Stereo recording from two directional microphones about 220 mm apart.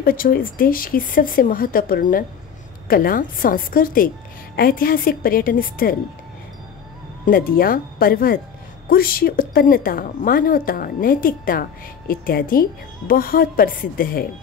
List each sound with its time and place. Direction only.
0.0 s a woman's voice: 40° left (ahead or behind)
7.2 s a woman's voice: 40° left (ahead or behind)